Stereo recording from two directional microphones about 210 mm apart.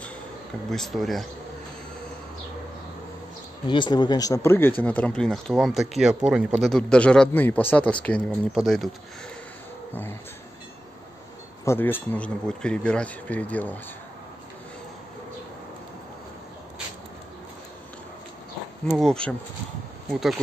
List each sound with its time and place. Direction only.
0.7 s speech: centre (ahead or behind)
3.6 s speech: 20° left (ahead or behind); by 8.9 s centre (ahead or behind)
11.6 s speech: 10° left (ahead or behind)
18.9 s speech: 5° left (ahead or behind)